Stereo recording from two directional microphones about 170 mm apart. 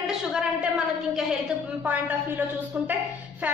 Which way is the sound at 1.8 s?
10° right (ahead or behind).